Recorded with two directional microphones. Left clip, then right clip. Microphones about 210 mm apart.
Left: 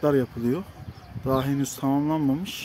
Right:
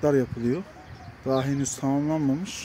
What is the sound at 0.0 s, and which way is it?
Speech, centre (ahead or behind).